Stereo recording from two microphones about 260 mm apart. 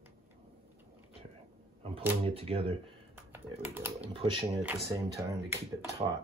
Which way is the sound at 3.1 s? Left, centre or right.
Centre.